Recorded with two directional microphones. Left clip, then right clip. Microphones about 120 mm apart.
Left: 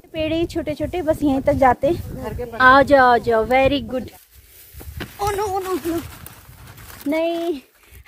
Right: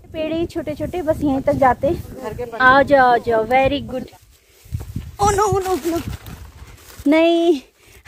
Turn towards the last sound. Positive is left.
turn(degrees=-90)